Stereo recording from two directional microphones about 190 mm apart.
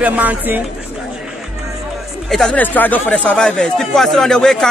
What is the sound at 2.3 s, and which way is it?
A man's voice, 5° left (ahead or behind).